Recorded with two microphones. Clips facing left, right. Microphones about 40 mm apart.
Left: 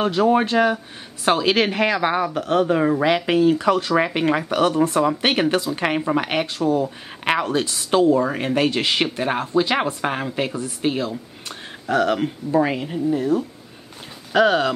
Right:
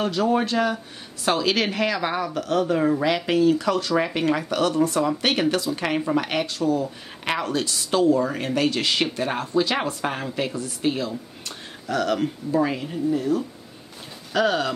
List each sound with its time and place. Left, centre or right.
0.0 s speech: left